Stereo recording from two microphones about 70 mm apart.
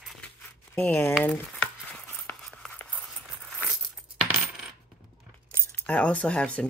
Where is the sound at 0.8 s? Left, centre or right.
Left.